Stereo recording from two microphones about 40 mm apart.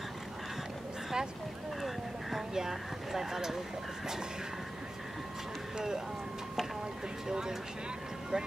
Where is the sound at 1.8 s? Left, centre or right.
Centre.